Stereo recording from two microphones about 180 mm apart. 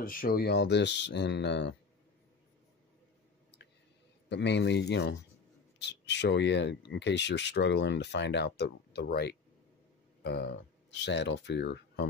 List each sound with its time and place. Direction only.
0.0 s speech: 50° left (ahead or behind); by 1.8 s 70° left (ahead or behind)
4.3 s speech: 75° left (ahead or behind)